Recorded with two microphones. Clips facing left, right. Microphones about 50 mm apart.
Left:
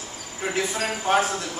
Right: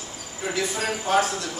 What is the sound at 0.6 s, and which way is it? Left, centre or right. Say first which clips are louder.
Speech: even; left.